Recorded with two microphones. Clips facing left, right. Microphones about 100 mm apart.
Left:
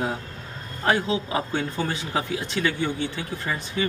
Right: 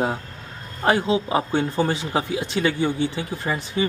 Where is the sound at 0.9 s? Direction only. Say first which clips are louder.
Right 3 dB; 20° right (ahead or behind).